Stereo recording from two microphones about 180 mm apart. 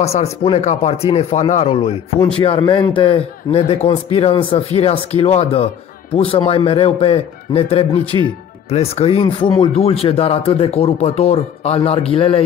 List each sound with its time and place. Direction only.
0.0 s a man's voice: 35° left (ahead or behind)
8.6 s a man's voice: 35° left (ahead or behind)